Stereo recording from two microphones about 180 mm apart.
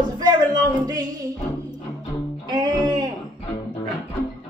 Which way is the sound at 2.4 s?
20° right (ahead or behind).